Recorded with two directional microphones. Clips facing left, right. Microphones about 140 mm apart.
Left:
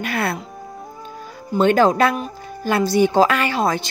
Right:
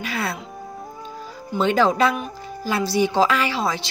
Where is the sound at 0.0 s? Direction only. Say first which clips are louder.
Left 4 dB; 55° left (ahead or behind).